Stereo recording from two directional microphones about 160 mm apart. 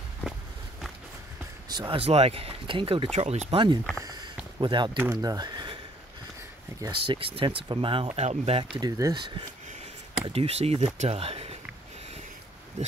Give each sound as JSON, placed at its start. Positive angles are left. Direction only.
{"t": 1.7, "sound": "speech", "side_deg": -30}
{"t": 4.0, "sound": "a sound", "side_deg": -25}
{"t": 5.1, "sound": "speech", "side_deg": -25}
{"t": 6.8, "sound": "speech", "side_deg": -30}
{"t": 8.7, "sound": "speech", "side_deg": -20}